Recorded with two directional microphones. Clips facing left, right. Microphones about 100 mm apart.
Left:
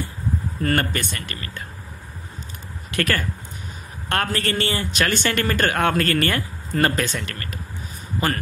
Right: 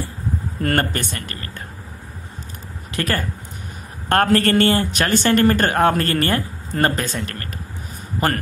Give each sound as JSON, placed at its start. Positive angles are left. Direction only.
{"t": 0.6, "sound": "speech", "side_deg": -45}
{"t": 1.1, "sound": "speech", "side_deg": -35}
{"t": 2.9, "sound": "speech", "side_deg": -30}
{"t": 4.1, "sound": "speech", "side_deg": -45}